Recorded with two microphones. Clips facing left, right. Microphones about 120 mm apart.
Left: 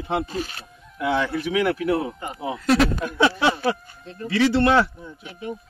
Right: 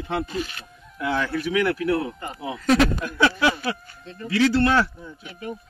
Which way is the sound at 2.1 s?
10° left (ahead or behind).